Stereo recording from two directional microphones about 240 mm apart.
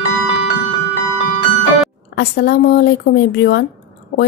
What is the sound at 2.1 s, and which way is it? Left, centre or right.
A woman's voice, left.